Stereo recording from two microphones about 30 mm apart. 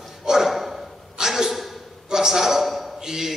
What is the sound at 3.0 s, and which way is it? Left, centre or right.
Speech, centre.